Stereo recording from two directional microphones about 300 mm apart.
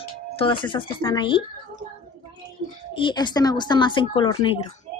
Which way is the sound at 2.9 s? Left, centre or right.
Centre.